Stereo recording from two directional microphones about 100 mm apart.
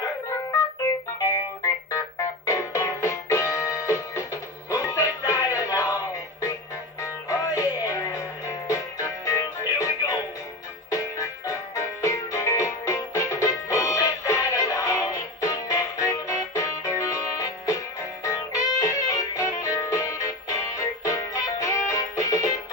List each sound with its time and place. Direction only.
1.2 s music: 30° left (ahead or behind)
7.0 s music: 35° left (ahead or behind)
18.2 s music: 35° left (ahead or behind)